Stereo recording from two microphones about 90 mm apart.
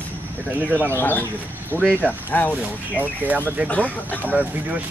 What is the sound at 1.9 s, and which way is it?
Speech, 15° right (ahead or behind).